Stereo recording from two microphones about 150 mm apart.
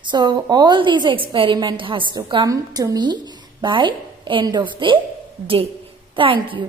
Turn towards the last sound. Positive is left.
turn(degrees=-35)  # may be behind; listen again after turning